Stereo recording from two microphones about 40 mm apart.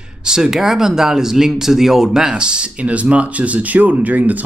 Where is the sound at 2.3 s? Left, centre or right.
Right.